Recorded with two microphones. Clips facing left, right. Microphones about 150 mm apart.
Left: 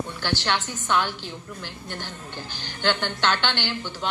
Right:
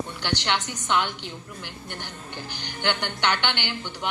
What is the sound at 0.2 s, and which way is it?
A woman's voice, 15° right (ahead or behind).